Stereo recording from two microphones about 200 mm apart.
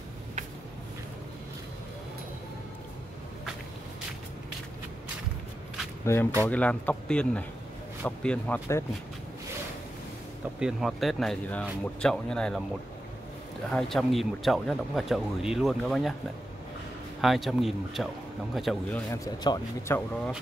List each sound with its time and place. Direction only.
6.1 s speech: 15° left (ahead or behind)
10.6 s speech: centre (ahead or behind)
13.7 s speech: centre (ahead or behind)
17.2 s speech: centre (ahead or behind)
19.2 s a man's voice: 20° left (ahead or behind)